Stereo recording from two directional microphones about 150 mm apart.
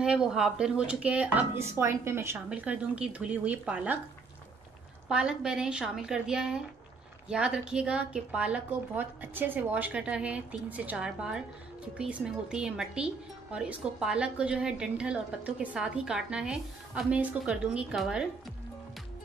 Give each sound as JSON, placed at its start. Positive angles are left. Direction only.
{"t": 0.0, "sound": "a woman's voice", "side_deg": -5}
{"t": 5.0, "sound": "a woman's voice", "side_deg": -5}